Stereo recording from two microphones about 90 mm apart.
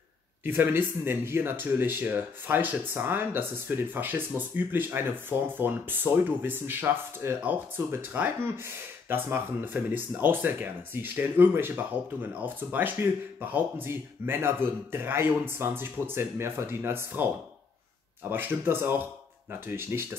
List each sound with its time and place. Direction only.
0.5 s speech: 25° right (ahead or behind)
18.3 s speech: 25° right (ahead or behind)